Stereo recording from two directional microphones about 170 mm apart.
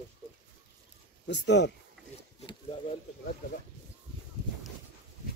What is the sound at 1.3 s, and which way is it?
Speech, 90° left.